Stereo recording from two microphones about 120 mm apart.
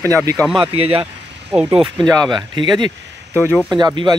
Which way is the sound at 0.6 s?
50° right (ahead or behind).